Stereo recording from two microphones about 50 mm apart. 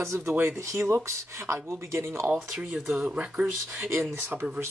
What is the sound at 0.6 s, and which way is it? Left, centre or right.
Speech, right.